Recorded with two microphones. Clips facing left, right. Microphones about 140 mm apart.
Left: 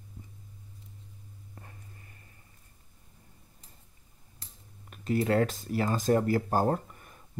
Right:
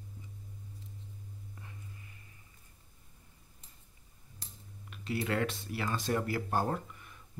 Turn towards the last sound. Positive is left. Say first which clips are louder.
# left 4 dB
turn(degrees=40)  # may be behind; listen again after turning